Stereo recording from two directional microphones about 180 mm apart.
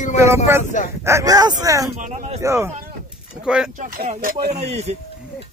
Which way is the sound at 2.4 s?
15° right (ahead or behind).